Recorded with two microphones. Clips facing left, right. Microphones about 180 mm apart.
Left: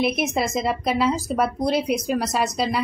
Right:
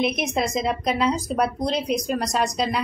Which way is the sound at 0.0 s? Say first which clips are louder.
Left 1 dB; 5° left (ahead or behind).